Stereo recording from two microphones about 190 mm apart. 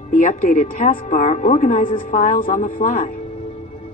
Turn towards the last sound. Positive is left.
turn(degrees=45)  # may be behind; listen again after turning